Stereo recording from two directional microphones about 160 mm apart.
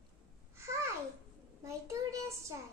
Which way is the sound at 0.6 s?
20° right (ahead or behind).